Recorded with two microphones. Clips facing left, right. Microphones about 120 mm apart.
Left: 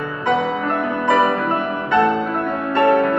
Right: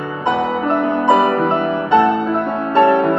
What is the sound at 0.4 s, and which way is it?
Music, 25° right (ahead or behind).